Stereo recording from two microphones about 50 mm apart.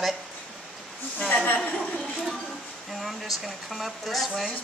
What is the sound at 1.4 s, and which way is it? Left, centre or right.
Speech, left.